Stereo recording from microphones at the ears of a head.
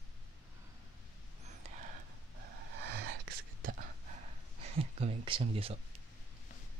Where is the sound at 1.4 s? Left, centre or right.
Right.